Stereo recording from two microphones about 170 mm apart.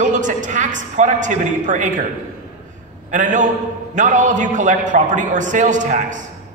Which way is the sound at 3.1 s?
50° right (ahead or behind).